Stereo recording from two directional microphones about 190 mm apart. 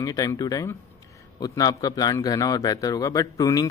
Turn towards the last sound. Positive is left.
turn(degrees=20)  # may be behind; listen again after turning